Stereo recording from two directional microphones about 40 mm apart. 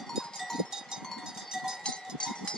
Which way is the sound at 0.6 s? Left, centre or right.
Centre.